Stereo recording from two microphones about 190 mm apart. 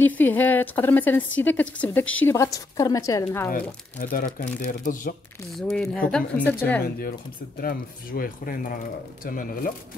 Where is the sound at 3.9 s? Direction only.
45° left (ahead or behind).